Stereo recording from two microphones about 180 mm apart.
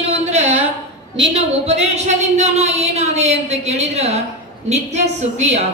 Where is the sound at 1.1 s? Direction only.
30° right (ahead or behind).